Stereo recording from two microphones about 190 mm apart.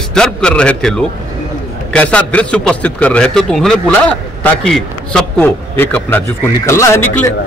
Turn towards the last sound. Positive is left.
turn(degrees=15)  # may be behind; listen again after turning